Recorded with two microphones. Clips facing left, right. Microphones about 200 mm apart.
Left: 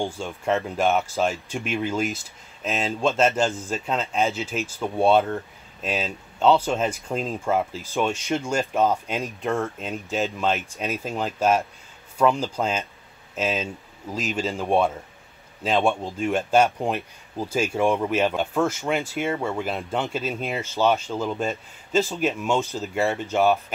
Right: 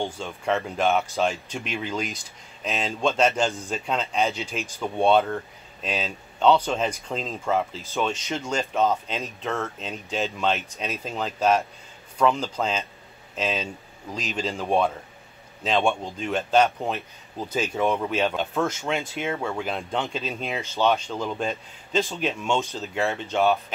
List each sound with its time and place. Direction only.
0.0 s speech: 10° left (ahead or behind)